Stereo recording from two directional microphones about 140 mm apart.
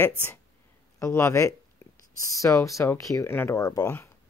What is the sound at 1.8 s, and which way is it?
Whispering, 20° left (ahead or behind).